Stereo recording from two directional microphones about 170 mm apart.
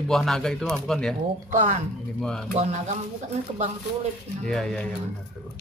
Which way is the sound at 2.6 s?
40° right (ahead or behind).